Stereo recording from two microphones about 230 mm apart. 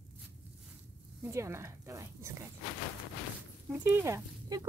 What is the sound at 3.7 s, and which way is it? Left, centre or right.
Speech, centre.